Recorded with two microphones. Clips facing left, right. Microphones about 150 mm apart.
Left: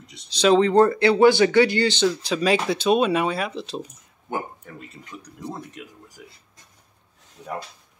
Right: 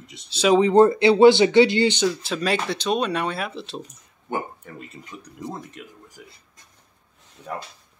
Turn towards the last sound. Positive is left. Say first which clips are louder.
# even
turn(degrees=5)  # may be behind; listen again after turning